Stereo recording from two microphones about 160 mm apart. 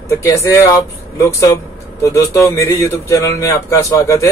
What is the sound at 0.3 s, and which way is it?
A man's voice, 20° left (ahead or behind).